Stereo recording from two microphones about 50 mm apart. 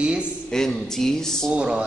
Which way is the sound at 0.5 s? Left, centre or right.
Centre.